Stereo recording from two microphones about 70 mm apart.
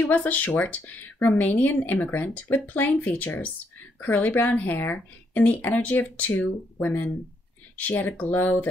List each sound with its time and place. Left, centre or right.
0.1 s speech: left